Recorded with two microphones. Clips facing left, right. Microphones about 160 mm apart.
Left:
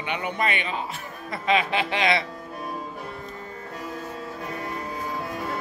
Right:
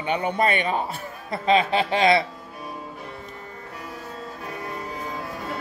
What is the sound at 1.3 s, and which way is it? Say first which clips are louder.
Speech: right 3 dB; 35° right (ahead or behind).